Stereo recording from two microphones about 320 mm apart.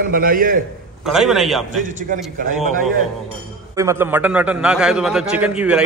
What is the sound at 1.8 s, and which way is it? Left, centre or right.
Speech, right.